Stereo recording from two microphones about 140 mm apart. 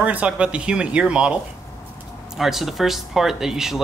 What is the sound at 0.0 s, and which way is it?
Speech, 10° right (ahead or behind).